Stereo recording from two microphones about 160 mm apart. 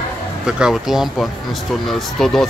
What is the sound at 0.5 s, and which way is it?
Speech, 5° right (ahead or behind).